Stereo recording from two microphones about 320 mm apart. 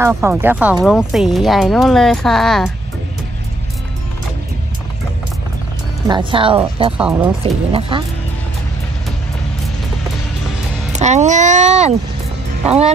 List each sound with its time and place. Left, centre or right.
0.0 s speech: centre
6.0 s speech: centre
7.0 s speech: centre
7.9 s speech: centre
10.9 s speech: right